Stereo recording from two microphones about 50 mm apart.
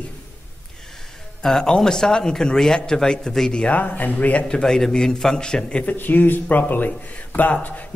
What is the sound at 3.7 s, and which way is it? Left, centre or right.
Speech, left.